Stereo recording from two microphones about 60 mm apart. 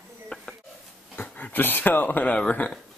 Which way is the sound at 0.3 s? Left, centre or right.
Centre.